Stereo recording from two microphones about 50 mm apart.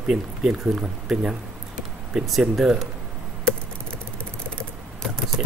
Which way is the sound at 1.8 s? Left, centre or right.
Centre.